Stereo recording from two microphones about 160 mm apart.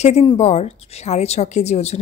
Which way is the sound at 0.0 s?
40° left (ahead or behind).